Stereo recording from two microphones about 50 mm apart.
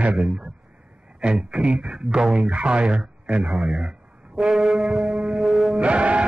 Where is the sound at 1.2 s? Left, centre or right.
Right.